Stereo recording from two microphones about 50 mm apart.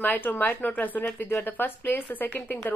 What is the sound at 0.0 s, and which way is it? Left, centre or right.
A woman's voice, left.